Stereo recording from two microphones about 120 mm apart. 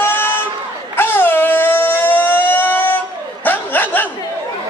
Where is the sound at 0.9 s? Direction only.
15° left (ahead or behind).